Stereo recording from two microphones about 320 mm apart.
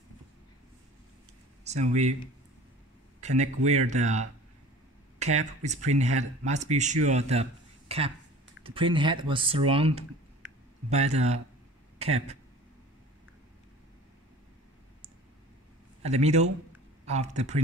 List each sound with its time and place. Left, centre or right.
1.6 s speech: right
3.2 s a sound: right
3.6 s speech: right
16.0 s speech: centre